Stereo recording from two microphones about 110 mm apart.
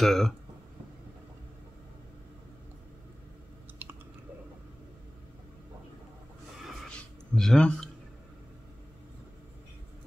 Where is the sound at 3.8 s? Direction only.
15° right (ahead or behind).